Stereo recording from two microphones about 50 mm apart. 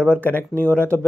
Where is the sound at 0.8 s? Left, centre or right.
Right.